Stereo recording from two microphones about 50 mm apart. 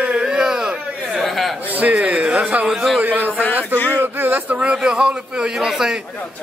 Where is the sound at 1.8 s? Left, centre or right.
Right.